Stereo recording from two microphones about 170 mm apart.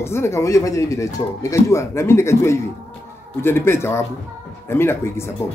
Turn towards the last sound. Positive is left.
turn(degrees=15)  # may be behind; listen again after turning